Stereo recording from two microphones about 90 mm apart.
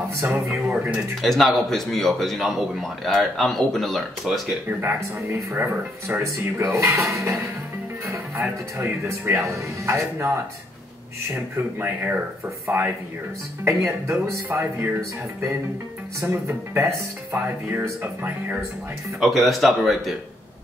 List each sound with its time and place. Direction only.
0.7 s speech: 15° right (ahead or behind)
1.2 s a man's voice: centre (ahead or behind)
4.6 s speech: 25° right (ahead or behind)
8.1 s music: 35° right (ahead or behind)
9.0 s speech: 25° right (ahead or behind)
11.3 s speech: 20° right (ahead or behind)
14.0 s speech: 35° right (ahead or behind)
19.1 s a man's voice: centre (ahead or behind)